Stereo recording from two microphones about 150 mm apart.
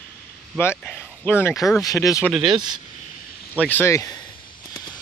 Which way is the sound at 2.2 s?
5° right (ahead or behind).